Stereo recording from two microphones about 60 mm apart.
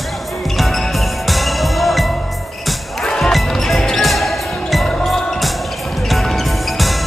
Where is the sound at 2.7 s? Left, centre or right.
Centre.